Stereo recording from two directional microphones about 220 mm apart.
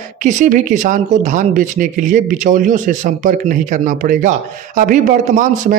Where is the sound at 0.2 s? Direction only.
35° right (ahead or behind).